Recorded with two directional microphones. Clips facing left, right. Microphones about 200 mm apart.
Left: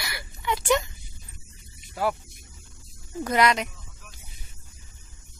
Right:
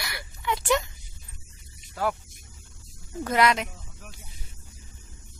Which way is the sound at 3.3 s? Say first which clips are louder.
Even; centre (ahead or behind).